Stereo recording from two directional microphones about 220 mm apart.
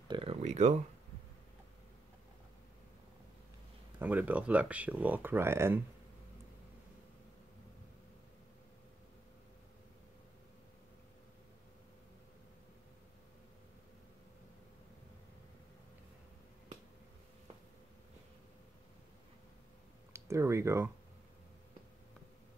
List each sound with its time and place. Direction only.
0.1 s speech: 25° right (ahead or behind)
4.0 s speech: 10° right (ahead or behind)
20.1 s a sound: 10° right (ahead or behind)